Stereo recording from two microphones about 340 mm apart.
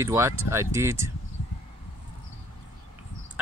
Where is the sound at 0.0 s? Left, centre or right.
Centre.